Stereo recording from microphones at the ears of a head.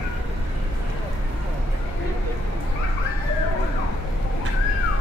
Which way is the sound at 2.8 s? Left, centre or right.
Left.